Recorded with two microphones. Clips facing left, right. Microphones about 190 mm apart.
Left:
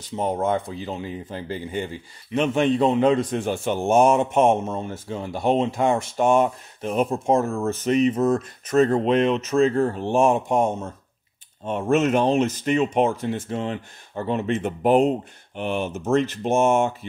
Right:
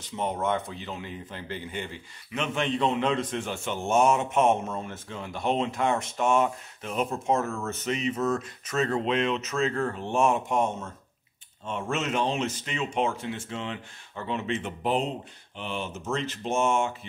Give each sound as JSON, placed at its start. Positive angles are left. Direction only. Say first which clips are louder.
{"t": 0.1, "sound": "speech", "louder": "left 5 dB", "side_deg": 35}
{"t": 3.8, "sound": "speech", "louder": "left 5 dB", "side_deg": 55}
{"t": 4.2, "sound": "speech", "louder": "left 5 dB", "side_deg": 30}
{"t": 7.8, "sound": "speech", "louder": "left 11 dB", "side_deg": 50}
{"t": 8.1, "sound": "speech", "louder": "left 6 dB", "side_deg": 30}
{"t": 8.7, "sound": "speech", "louder": "left 8 dB", "side_deg": 45}
{"t": 9.6, "sound": "speech", "louder": "left 10 dB", "side_deg": 35}
{"t": 11.6, "sound": "speech", "louder": "left 10 dB", "side_deg": 50}